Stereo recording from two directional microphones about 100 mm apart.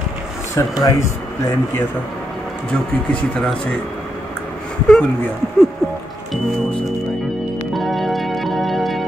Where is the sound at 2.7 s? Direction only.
10° left (ahead or behind).